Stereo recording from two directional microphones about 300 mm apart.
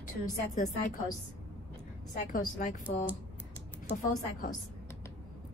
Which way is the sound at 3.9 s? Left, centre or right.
Left.